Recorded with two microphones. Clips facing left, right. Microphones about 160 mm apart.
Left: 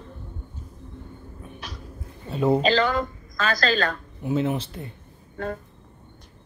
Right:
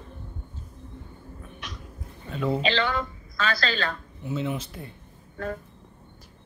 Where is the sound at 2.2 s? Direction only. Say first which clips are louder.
Left 5 dB; 35° left (ahead or behind).